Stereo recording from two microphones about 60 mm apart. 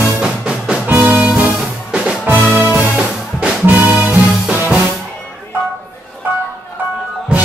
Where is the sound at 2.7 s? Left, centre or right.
Right.